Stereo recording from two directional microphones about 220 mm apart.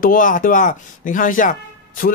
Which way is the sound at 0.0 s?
40° left (ahead or behind).